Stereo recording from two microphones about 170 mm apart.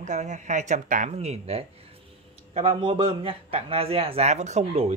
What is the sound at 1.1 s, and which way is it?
A man's voice, 35° right (ahead or behind).